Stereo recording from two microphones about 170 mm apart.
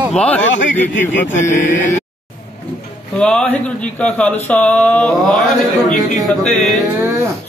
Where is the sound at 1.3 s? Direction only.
45° left (ahead or behind).